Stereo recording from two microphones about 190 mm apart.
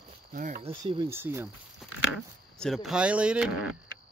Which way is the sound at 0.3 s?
45° right (ahead or behind).